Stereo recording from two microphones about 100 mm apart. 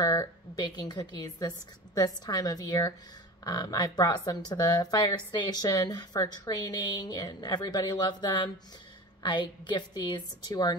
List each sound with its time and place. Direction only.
0.0 s a woman's voice: 35° left (ahead or behind)